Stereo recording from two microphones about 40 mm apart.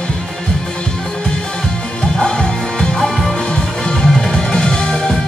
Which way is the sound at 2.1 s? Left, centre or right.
Centre.